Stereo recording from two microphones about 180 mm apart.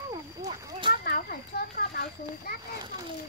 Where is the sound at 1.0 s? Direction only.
55° left (ahead or behind).